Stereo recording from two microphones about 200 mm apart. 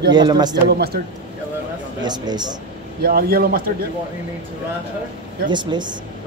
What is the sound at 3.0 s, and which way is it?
Speech, 50° right (ahead or behind).